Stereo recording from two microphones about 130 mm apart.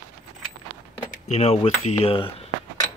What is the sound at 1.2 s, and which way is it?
Speech, 55° left (ahead or behind).